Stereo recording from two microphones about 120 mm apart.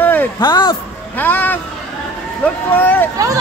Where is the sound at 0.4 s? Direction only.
40° left (ahead or behind).